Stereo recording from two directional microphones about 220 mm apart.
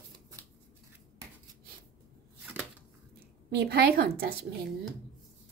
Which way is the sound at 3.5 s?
45° right (ahead or behind).